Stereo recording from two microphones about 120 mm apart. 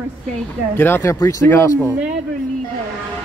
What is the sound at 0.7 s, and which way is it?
Speech, 20° left (ahead or behind).